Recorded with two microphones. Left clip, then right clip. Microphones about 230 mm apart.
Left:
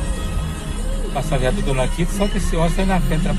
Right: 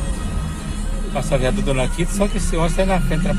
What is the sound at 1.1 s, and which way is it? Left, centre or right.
Speech, centre.